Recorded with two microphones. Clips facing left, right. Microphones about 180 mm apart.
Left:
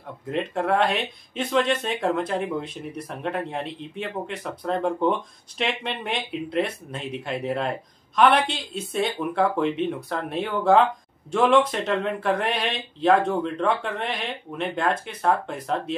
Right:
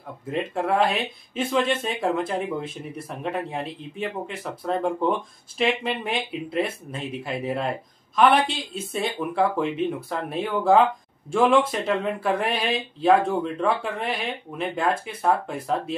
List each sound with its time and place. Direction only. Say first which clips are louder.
0.3 s speech: left 1 dB; 5° right (ahead or behind)